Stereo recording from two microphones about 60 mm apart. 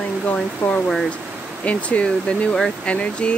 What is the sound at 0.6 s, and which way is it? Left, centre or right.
Speech, left.